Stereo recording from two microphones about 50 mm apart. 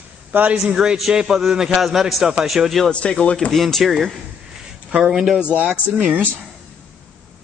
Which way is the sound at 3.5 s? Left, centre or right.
Centre.